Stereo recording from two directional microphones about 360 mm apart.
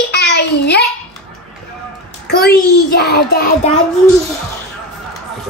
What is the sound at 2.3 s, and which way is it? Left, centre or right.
A child's voice, left.